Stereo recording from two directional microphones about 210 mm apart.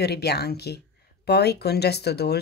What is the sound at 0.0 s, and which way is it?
Speech, 50° left (ahead or behind).